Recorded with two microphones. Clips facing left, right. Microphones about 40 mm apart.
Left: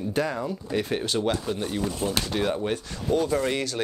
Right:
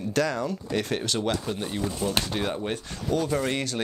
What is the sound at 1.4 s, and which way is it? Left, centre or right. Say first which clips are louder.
Speech: left 2 dB; right.